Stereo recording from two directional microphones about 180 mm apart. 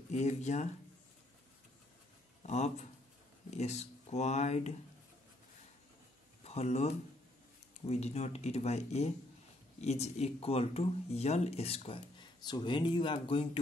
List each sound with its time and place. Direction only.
0.1 s speech: 40° left (ahead or behind)
2.4 s a man's voice: 40° left (ahead or behind)
6.4 s speech: 35° left (ahead or behind)